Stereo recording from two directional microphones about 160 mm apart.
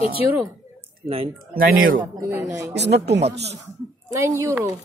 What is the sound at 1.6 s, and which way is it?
Speech, 65° right (ahead or behind).